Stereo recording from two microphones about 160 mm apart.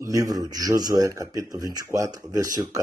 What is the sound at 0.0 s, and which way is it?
Speech, 20° right (ahead or behind).